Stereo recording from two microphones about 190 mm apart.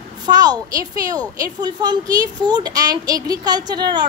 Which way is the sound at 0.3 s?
20° right (ahead or behind).